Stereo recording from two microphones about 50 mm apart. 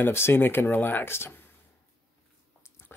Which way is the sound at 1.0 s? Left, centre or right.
Left.